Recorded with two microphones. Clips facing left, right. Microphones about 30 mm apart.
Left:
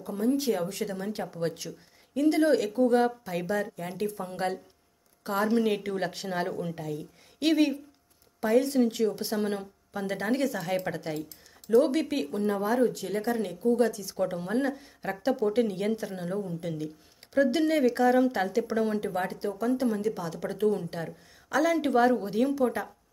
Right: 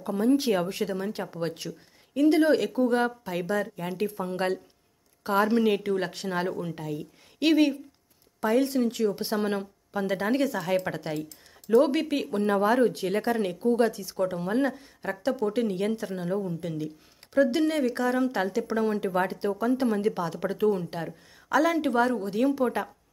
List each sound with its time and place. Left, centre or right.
0.0 s speech: right
0.6 s speech: right
0.8 s a woman's voice: centre
9.1 s a woman's voice: centre
11.1 s typing: centre
11.7 s a woman's voice: centre
12.3 s speech: right
14.0 s a woman's voice: centre
19.4 s speech: right
19.8 s speech: right
20.4 s a woman's voice: centre
22.6 s speech: centre